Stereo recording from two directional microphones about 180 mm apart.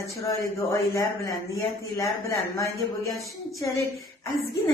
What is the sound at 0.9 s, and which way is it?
Speech, 15° left (ahead or behind).